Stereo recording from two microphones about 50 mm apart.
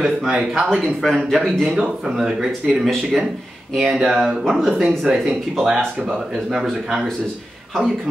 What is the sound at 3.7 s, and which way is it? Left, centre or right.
Speech, centre.